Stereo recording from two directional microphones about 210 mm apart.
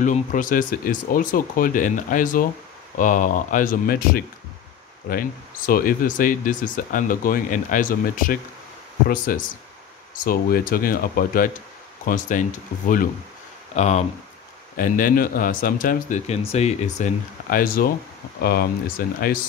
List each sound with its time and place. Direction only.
0.0 s speech: 40° left (ahead or behind)